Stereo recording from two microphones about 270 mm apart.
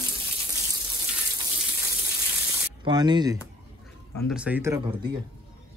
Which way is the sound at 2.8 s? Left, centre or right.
Centre.